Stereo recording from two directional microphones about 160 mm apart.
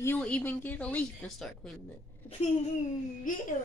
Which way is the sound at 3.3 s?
55° left (ahead or behind).